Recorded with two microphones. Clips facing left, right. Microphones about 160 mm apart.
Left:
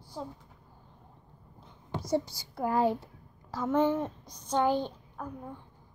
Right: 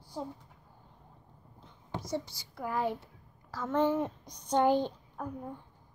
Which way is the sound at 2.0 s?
40° left (ahead or behind).